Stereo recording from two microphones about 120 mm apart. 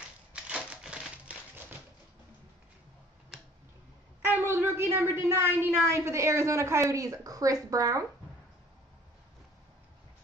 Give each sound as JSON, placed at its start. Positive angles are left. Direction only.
{"t": 0.3, "sound": "a sound", "side_deg": -10}
{"t": 3.3, "sound": "tick", "side_deg": -5}
{"t": 4.3, "sound": "a woman's voice", "side_deg": -20}